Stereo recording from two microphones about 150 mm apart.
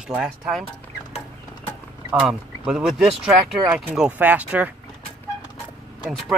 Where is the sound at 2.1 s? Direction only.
5° right (ahead or behind).